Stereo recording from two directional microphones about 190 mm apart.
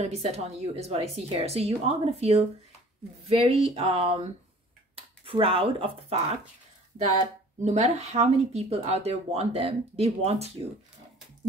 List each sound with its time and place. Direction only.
0.0 s speech: 35° right (ahead or behind)
7.6 s speech: 35° right (ahead or behind)